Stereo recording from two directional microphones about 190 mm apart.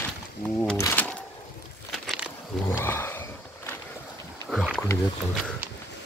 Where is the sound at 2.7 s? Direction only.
10° left (ahead or behind).